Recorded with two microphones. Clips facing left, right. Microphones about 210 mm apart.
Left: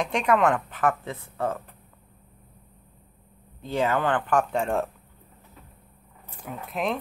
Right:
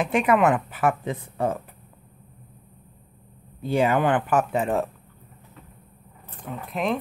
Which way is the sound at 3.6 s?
10° right (ahead or behind).